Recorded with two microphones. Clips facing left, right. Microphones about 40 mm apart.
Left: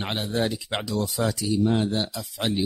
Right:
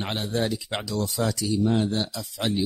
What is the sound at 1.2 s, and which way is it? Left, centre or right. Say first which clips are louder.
Speech: left 1 dB; centre.